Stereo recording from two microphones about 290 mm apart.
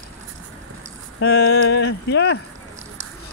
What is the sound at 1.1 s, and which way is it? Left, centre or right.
Speech, left.